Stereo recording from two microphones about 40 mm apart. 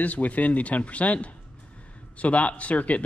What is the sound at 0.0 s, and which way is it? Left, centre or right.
Speech, left.